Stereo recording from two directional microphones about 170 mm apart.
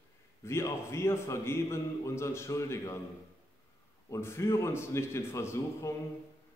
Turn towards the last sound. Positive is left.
turn(degrees=15)  # may be behind; listen again after turning